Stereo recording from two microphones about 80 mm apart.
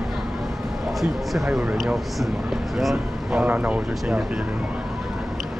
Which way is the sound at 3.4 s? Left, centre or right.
Centre.